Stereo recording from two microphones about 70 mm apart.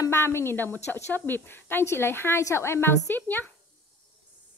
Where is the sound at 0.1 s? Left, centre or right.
Left.